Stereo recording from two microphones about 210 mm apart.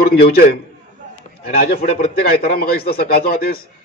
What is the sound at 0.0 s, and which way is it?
A man's voice, 45° left (ahead or behind).